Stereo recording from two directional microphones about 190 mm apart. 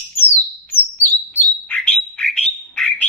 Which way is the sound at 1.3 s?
10° left (ahead or behind).